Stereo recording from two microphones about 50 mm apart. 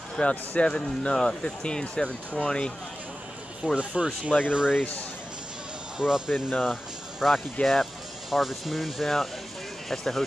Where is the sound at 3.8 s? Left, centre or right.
Right.